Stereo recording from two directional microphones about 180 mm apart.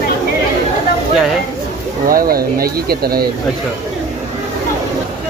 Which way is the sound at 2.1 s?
55° right (ahead or behind).